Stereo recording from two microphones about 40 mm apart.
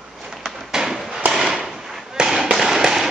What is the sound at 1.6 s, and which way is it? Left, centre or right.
Firecracker, centre.